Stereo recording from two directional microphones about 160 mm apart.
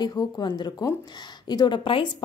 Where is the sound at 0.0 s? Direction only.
25° left (ahead or behind).